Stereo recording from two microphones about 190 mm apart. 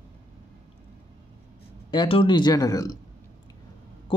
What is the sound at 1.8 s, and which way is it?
Speech, 25° left (ahead or behind).